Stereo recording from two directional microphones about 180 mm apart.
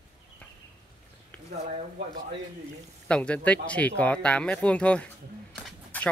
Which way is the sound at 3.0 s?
5° left (ahead or behind).